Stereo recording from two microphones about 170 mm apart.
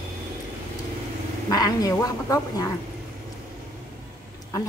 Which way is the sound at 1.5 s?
20° left (ahead or behind).